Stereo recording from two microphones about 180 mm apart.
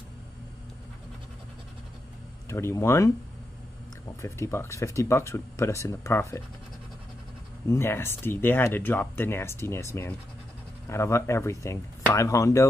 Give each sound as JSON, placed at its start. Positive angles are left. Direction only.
{"t": 2.4, "sound": "speech", "side_deg": 15}
{"t": 4.2, "sound": "speech", "side_deg": 15}
{"t": 7.6, "sound": "speech", "side_deg": 15}